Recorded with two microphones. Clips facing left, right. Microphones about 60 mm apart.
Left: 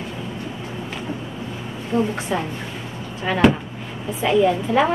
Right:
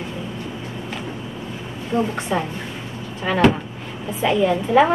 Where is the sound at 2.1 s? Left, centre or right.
Centre.